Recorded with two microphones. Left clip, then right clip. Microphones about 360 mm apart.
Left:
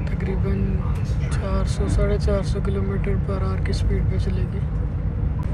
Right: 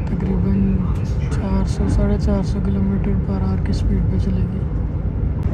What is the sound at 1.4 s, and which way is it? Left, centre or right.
Speech, centre.